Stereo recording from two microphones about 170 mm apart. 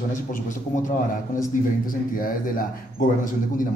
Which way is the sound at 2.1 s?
55° left (ahead or behind).